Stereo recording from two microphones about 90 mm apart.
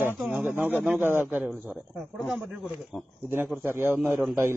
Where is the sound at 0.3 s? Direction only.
20° right (ahead or behind).